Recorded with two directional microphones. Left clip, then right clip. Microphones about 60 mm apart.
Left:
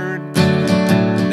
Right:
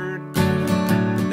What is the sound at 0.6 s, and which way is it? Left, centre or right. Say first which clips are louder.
Music: left 6 dB; right.